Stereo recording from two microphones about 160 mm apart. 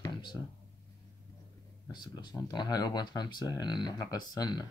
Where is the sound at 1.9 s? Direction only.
25° left (ahead or behind).